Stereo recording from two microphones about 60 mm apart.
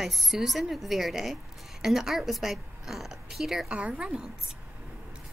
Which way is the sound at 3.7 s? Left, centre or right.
Centre.